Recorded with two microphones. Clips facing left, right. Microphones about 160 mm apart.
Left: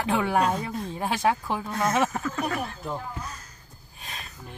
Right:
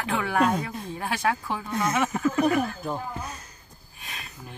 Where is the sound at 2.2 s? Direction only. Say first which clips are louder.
Right 7 dB; 20° right (ahead or behind).